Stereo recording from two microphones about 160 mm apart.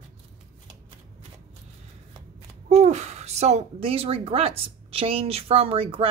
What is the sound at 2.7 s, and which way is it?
Speech, 45° right (ahead or behind).